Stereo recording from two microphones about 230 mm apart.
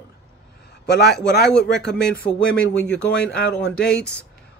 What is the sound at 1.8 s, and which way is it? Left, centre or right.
Speech, centre.